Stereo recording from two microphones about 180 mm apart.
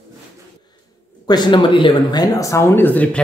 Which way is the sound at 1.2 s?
25° left (ahead or behind).